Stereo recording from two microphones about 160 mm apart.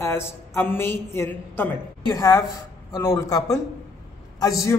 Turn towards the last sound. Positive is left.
turn(degrees=20)  # may be behind; listen again after turning